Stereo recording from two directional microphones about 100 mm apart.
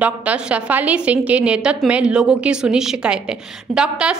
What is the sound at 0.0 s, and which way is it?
A woman's voice, 15° right (ahead or behind).